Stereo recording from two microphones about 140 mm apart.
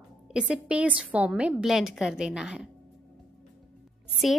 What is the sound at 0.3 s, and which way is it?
A woman's voice, 5° right (ahead or behind).